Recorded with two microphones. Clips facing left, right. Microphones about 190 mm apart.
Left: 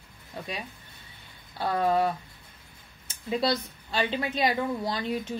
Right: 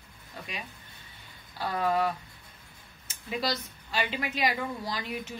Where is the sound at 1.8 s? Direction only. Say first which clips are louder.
Left 3 dB; 30° left (ahead or behind).